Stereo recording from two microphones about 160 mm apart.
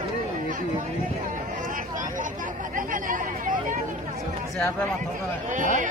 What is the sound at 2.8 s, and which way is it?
Speech, 55° right (ahead or behind).